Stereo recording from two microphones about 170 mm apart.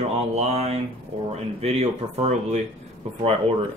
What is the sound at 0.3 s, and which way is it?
Speech, 40° right (ahead or behind).